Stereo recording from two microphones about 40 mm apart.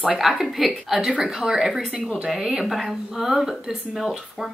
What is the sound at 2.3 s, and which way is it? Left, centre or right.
Speech, centre.